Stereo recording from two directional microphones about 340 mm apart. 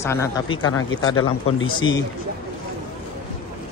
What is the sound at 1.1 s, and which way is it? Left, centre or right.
Speech, left.